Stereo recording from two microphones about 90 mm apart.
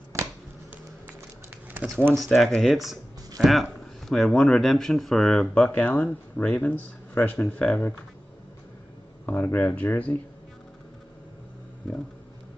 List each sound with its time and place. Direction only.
0.1 s a sound: 35° right (ahead or behind)
1.7 s speech: 20° right (ahead or behind)
2.1 s speech: centre (ahead or behind)
5.5 s speech: 15° left (ahead or behind)
9.2 s speech: 20° left (ahead or behind)